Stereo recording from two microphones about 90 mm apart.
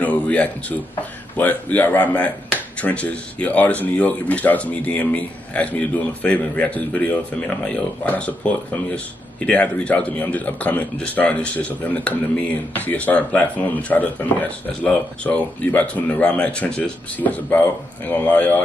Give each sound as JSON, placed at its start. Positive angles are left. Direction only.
{"t": 0.0, "sound": "speech", "side_deg": 15}